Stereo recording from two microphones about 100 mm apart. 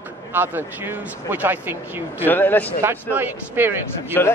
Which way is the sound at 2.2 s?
20° left (ahead or behind).